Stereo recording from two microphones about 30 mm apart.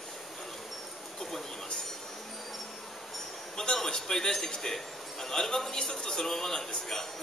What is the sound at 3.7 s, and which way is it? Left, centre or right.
A man's voice, centre.